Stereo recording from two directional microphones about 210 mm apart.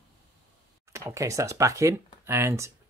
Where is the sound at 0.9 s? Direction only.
15° right (ahead or behind).